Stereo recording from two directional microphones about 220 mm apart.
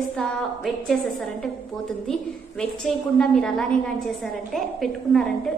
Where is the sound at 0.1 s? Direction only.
Centre (ahead or behind).